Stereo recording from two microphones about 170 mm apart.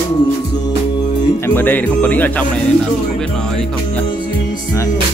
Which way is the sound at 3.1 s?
5° left (ahead or behind).